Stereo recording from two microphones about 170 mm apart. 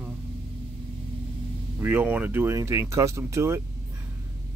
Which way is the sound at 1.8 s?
10° right (ahead or behind).